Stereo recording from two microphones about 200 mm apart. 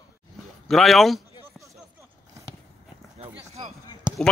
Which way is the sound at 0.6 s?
Centre (ahead or behind).